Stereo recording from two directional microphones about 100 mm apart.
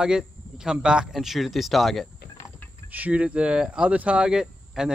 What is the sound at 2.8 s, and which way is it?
Speech, 15° right (ahead or behind).